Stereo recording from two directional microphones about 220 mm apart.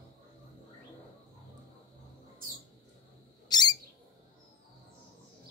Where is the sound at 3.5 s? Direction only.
20° left (ahead or behind).